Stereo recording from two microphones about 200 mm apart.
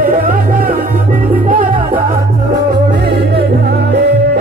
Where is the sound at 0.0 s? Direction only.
45° right (ahead or behind).